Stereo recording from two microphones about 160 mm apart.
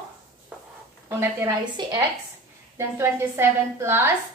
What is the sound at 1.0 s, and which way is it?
A woman's voice, 25° right (ahead or behind).